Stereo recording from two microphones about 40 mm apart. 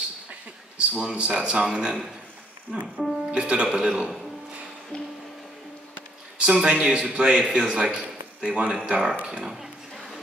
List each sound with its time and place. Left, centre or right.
0.7 s speech: right
3.0 s speech: centre
3.3 s speech: right
4.9 s music: left
6.3 s a man's voice: right
8.8 s speech: centre